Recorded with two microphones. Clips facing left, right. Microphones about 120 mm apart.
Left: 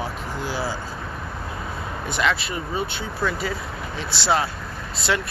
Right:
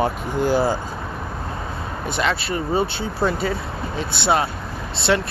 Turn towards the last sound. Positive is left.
turn(degrees=-25)  # may be behind; listen again after turning